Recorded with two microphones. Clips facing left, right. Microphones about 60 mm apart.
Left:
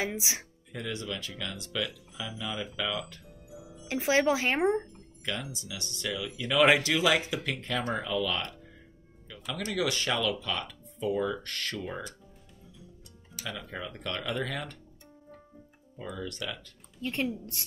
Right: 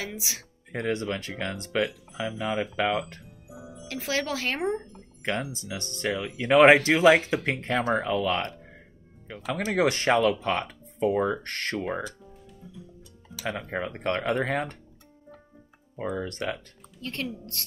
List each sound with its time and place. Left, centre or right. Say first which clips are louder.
0.0 s speech: left 3 dB; left
0.7 s speech: right 8 dB; right
3.8 s speech: left 4 dB; left
5.2 s speech: right 6 dB; right
13.5 s speech: right 7 dB; right
16.0 s speech: right 7 dB; right
17.0 s a woman's voice: left 2 dB; centre